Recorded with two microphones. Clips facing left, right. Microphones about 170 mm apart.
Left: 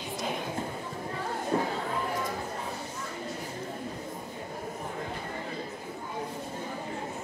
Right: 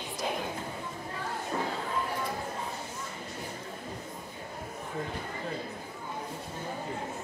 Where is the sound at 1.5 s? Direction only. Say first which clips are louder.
Left 5 dB; 30° left (ahead or behind).